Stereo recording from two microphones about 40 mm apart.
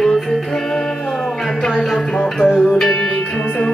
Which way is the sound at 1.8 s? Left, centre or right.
Centre.